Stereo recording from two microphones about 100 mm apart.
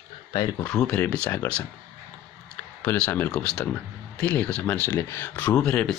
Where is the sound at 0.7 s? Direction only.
10° left (ahead or behind).